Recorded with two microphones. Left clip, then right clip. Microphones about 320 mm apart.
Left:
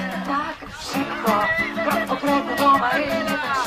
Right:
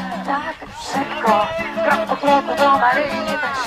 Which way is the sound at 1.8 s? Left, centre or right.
Right.